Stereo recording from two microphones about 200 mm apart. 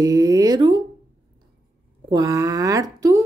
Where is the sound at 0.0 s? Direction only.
20° right (ahead or behind).